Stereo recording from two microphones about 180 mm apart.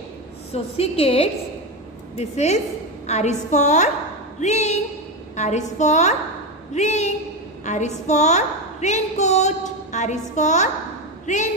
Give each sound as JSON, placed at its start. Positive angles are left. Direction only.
{"t": 0.5, "sound": "a woman's voice", "side_deg": 35}